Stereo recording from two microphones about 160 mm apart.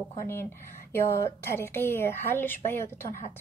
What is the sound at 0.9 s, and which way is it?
A woman's voice, 15° left (ahead or behind).